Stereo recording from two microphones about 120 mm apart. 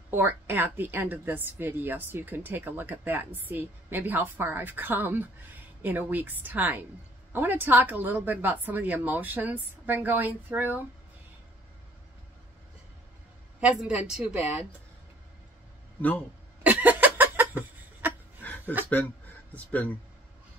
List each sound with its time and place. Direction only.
0.1 s a woman's voice: 15° right (ahead or behind)
13.6 s a woman's voice: 10° right (ahead or behind)
16.0 s speech: 15° left (ahead or behind)
16.6 s a sound: 15° right (ahead or behind)
18.4 s a sound: 15° left (ahead or behind)
19.5 s speech: 10° left (ahead or behind)